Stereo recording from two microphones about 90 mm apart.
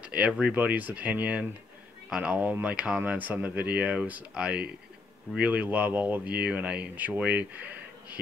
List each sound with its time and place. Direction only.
0.0 s speech: 15° right (ahead or behind)